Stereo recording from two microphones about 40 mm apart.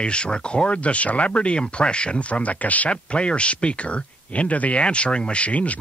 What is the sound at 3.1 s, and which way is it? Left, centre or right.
Speech, left.